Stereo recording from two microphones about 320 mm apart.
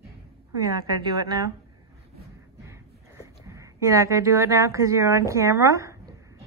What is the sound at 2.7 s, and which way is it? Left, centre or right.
Speech, centre.